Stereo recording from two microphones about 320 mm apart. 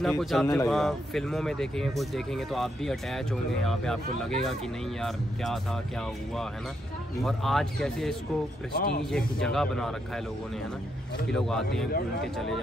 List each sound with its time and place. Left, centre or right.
0.0 s a man's voice: centre
8.7 s speech: left
9.1 s a man's voice: centre
11.2 s a man's voice: centre